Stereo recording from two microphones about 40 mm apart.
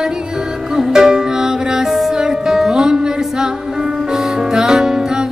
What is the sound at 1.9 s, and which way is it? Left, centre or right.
Music, centre.